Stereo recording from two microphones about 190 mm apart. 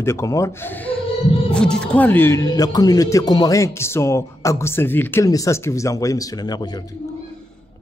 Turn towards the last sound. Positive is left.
turn(degrees=20)  # may be behind; listen again after turning